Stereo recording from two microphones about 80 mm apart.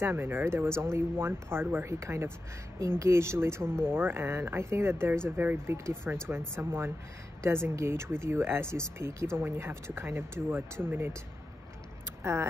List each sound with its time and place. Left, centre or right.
0.0 s speech: right
12.2 s speech: right